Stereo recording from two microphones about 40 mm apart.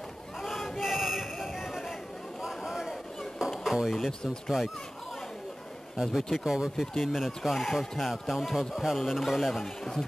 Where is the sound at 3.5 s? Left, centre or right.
Centre.